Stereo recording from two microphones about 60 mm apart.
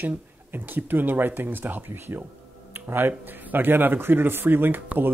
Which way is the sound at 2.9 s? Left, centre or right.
Right.